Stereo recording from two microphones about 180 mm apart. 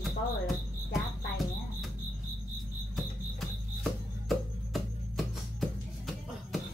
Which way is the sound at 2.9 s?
Centre (ahead or behind).